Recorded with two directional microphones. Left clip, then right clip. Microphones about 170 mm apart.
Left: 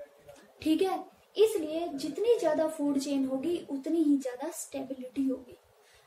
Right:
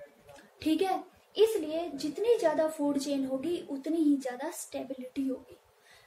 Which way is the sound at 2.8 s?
30° left (ahead or behind).